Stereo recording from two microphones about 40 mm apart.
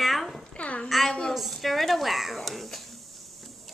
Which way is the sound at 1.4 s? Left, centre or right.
Centre.